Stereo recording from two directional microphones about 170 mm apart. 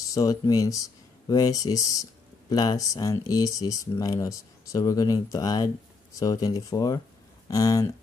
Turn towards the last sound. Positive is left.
turn(degrees=20)  # may be behind; listen again after turning